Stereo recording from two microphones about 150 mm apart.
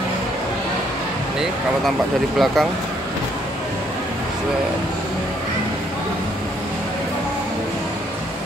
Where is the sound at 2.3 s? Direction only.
Centre (ahead or behind).